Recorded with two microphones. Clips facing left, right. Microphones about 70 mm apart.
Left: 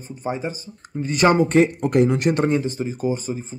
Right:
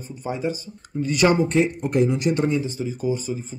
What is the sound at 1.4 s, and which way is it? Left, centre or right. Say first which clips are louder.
Speech: left 4 dB; left.